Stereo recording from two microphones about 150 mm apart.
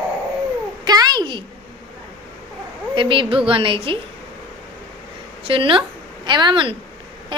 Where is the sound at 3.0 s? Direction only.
35° right (ahead or behind).